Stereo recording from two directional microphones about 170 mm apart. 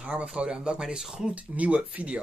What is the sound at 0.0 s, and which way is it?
Speech, 5° right (ahead or behind).